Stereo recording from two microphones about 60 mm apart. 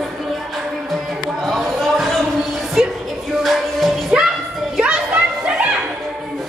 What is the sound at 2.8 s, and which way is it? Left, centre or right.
Music, centre.